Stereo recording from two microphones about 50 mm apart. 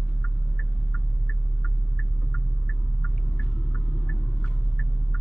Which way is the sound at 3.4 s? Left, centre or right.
Left.